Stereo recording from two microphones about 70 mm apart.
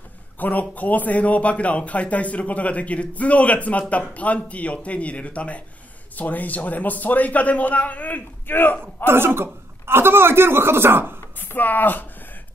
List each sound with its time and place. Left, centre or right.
0.4 s speech: left
8.8 s a man's voice: right
11.3 s speech: left